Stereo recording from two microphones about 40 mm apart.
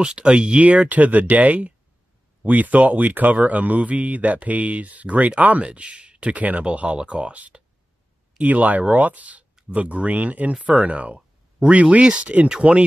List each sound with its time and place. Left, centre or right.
0.0 s speech: right